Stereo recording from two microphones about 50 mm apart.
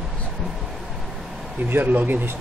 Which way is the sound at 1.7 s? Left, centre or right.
Right.